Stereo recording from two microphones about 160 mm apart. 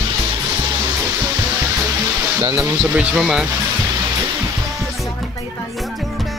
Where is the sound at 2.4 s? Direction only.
15° right (ahead or behind).